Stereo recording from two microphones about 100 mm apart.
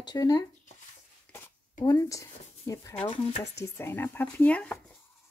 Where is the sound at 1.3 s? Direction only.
15° left (ahead or behind).